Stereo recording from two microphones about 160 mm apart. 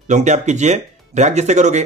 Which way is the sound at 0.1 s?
50° right (ahead or behind).